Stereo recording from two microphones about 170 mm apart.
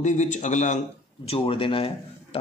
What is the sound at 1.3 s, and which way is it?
Speech, 30° left (ahead or behind).